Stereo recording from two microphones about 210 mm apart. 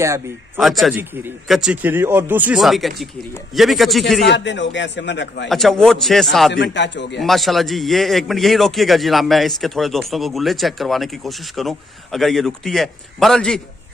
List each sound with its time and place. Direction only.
0.6 s a man's voice: centre (ahead or behind)
4.3 s a man's voice: 55° left (ahead or behind)
5.5 s a man's voice: centre (ahead or behind)
6.5 s a man's voice: 55° left (ahead or behind)
7.2 s a man's voice: centre (ahead or behind)